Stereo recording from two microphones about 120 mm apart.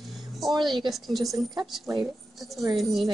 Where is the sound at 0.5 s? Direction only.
40° right (ahead or behind).